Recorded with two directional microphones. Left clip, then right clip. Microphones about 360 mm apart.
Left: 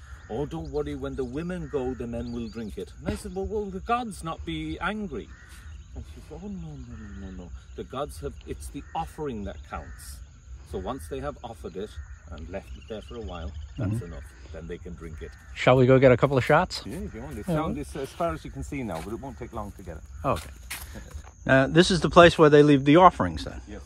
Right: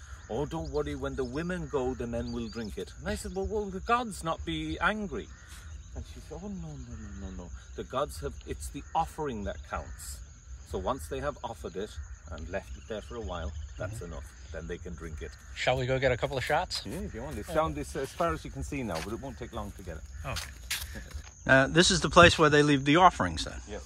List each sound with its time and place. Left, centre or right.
0.3 s speech: centre
6.3 s speech: centre
15.8 s speech: centre
16.9 s speech: centre